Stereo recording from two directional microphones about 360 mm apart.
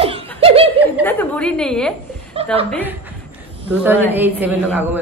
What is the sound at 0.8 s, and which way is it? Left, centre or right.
Speech, centre.